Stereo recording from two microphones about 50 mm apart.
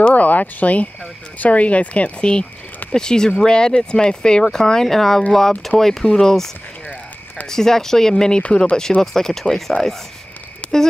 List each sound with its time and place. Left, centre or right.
0.1 s speech: left; by 8.4 s centre
8.4 s speech: left; by 9.9 s centre
10.6 s a sound: left